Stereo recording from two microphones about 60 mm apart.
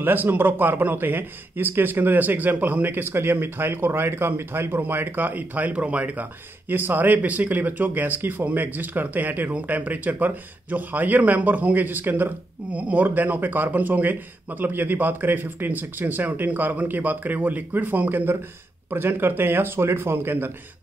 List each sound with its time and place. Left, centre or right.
0.0 s a man's voice: right